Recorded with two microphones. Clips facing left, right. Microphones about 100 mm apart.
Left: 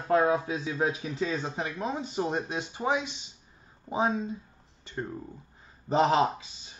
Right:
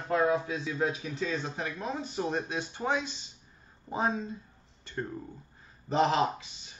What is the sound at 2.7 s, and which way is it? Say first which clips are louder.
Speech: left 3 dB; 5° left (ahead or behind).